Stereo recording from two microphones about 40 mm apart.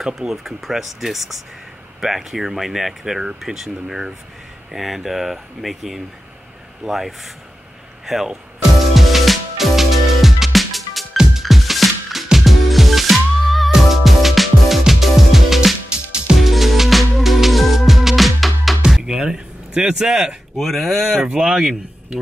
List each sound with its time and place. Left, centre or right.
0.3 s speech: centre
8.9 s music: centre
19.0 s music: centre
19.8 s speech: centre
20.5 s speech: centre
21.3 s speech: centre